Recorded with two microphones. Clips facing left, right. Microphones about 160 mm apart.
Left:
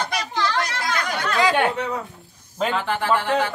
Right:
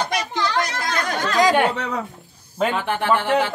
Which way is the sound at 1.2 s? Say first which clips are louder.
Right 3 dB; 40° right (ahead or behind).